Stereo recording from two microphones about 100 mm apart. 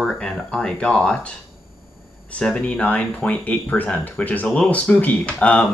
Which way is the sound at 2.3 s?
10° left (ahead or behind).